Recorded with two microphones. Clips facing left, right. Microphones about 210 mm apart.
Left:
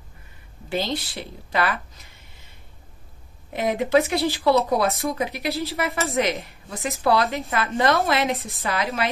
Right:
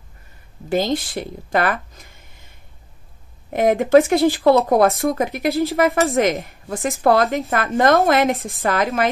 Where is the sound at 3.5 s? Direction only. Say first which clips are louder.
Right 7 dB; 50° right (ahead or behind).